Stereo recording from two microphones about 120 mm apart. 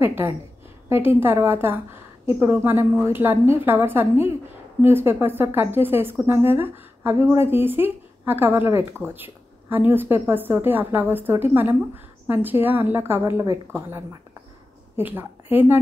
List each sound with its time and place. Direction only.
0.0 s a woman's voice: 20° right (ahead or behind)